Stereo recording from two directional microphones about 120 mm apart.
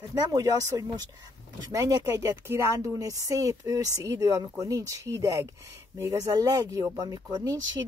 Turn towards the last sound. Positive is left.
turn(degrees=-30)  # may be behind; listen again after turning